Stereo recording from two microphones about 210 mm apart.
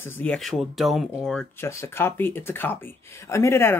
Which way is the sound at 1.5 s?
10° left (ahead or behind).